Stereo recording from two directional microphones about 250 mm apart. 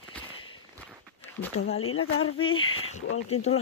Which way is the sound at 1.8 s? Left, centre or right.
Left.